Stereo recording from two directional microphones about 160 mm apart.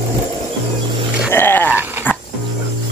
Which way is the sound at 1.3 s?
15° left (ahead or behind).